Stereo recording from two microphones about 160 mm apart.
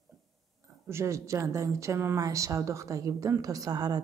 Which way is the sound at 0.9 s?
20° right (ahead or behind).